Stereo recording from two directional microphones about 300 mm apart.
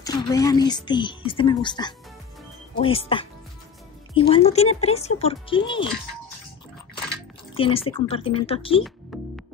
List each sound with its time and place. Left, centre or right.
0.0 s a woman's voice: centre
7.5 s speech: centre
9.1 s music: centre